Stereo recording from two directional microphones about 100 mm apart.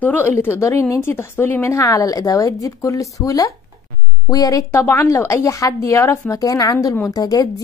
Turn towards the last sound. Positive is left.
turn(degrees=40)  # may be behind; listen again after turning